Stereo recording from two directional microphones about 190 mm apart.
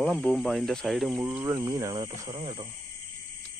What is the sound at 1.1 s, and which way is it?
Speech, 15° right (ahead or behind).